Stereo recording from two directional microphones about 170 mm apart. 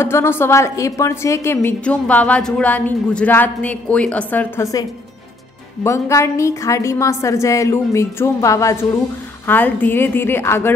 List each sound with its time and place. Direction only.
0.0 s a woman's voice: 15° left (ahead or behind)
5.9 s a woman's voice: 15° left (ahead or behind)